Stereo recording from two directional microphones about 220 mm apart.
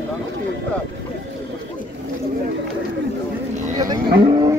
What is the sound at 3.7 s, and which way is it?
Cattle, 20° right (ahead or behind).